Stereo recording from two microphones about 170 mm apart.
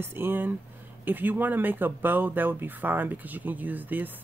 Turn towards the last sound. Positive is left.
turn(degrees=-10)  # may be behind; listen again after turning